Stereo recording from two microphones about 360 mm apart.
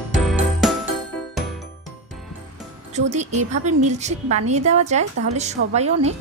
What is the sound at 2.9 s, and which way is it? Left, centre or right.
A woman's voice, centre.